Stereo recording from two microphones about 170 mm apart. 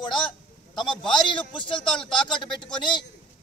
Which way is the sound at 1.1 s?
30° left (ahead or behind).